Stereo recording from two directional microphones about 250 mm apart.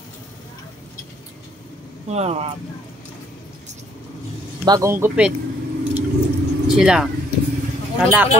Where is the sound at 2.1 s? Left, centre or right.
Right.